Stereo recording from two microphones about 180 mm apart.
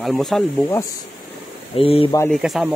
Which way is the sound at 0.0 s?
Centre (ahead or behind).